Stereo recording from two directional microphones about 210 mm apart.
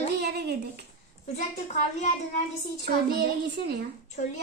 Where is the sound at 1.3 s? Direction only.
35° left (ahead or behind).